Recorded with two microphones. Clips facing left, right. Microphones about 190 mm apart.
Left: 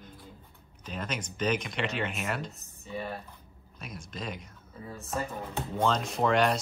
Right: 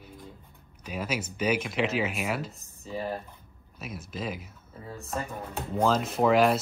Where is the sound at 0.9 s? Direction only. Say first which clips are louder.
Right 4 dB; 5° right (ahead or behind).